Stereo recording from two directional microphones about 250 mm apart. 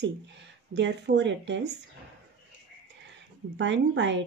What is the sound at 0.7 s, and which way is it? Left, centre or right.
Speech, right.